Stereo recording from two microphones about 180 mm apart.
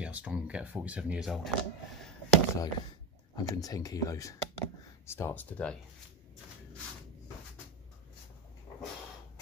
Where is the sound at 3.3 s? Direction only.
20° left (ahead or behind).